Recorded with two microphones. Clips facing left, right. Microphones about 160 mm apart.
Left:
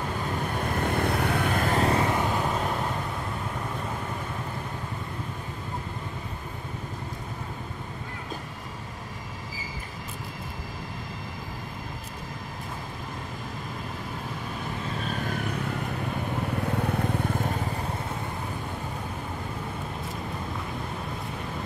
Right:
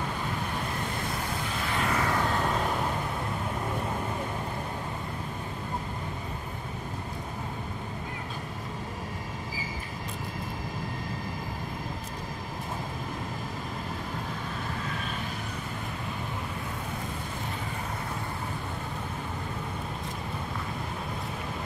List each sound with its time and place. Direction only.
0.8 s vehicle: 60° left (ahead or behind)
1.8 s vehicle: 30° left (ahead or behind)
2.0 s vehicle: 15° left (ahead or behind)
17.0 s vehicle: 55° left (ahead or behind)